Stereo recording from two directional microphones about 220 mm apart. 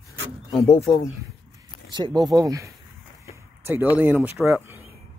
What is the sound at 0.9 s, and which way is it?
Speech, 20° left (ahead or behind).